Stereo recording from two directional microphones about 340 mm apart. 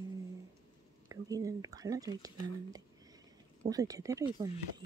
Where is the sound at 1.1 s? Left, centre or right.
Centre.